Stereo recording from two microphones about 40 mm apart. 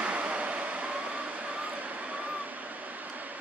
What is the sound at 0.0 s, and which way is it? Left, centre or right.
Vehicle, right.